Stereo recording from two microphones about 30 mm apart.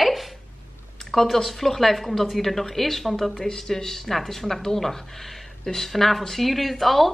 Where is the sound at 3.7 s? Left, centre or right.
Centre.